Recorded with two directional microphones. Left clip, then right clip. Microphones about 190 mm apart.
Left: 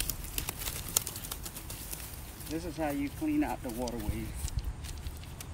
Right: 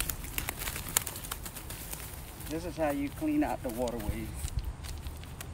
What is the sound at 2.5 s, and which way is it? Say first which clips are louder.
Speech: right 2 dB; 15° right (ahead or behind).